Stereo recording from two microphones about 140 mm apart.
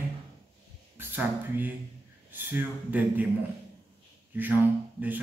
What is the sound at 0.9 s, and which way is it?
Speech, 15° right (ahead or behind).